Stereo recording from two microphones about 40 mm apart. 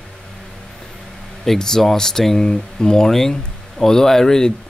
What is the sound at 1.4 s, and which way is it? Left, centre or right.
Speech, centre.